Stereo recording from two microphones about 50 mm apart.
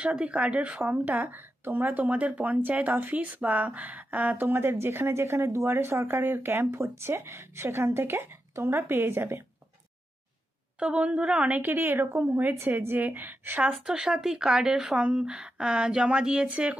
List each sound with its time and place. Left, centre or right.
0.0 s speech: right
0.7 s speech: right
1.9 s speech: right
6.7 s speech: right
10.8 s speech: right
11.7 s speech: right
13.7 s speech: centre